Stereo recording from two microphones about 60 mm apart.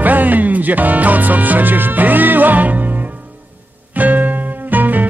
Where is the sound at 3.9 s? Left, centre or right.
Right.